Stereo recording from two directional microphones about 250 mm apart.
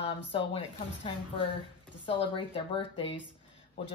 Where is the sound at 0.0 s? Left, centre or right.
Left.